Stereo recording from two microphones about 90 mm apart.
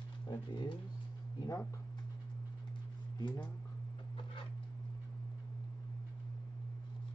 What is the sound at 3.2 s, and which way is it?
Speech, 50° left (ahead or behind).